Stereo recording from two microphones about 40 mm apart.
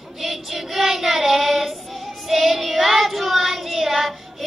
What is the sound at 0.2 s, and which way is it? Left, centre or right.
Child singing, centre.